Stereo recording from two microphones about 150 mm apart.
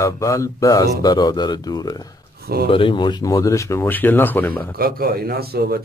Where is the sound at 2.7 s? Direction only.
35° left (ahead or behind); by 4.6 s 10° left (ahead or behind).